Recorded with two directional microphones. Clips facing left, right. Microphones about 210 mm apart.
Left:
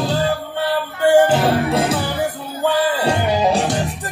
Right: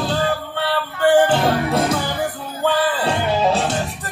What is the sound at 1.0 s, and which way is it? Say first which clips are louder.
Music: left 1 dB; 10° left (ahead or behind).